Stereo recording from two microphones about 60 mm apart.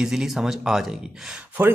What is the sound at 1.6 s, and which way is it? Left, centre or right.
Speech, right.